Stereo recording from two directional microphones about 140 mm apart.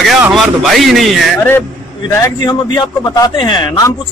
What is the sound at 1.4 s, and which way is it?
A man's voice, 15° left (ahead or behind).